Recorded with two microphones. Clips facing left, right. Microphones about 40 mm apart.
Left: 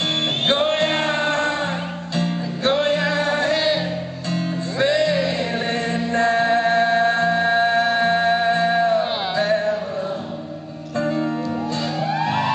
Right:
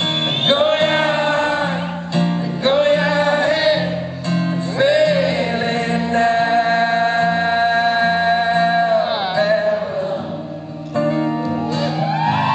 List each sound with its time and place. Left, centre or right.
0.5 s music: centre
11.0 s music: centre